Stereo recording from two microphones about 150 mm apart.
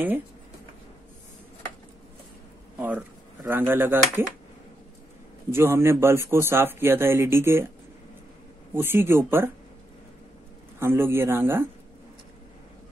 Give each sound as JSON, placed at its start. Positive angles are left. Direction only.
{"t": 2.8, "sound": "speech", "side_deg": -10}
{"t": 5.5, "sound": "speech", "side_deg": -15}
{"t": 8.7, "sound": "speech", "side_deg": -15}
{"t": 10.8, "sound": "speech", "side_deg": -15}